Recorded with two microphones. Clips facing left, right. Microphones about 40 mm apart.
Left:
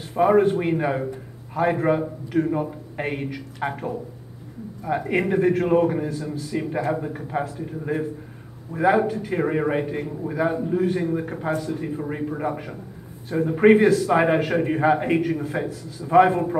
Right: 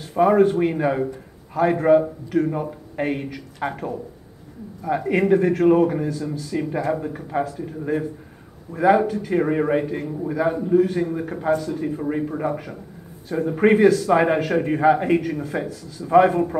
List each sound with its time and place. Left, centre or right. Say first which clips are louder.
0.1 s a man's voice: right 1 dB; centre
6.0 s a man's voice: right 2 dB; centre
9.0 s a man's voice: right 1 dB; centre
9.3 s a man's voice: right 4 dB; centre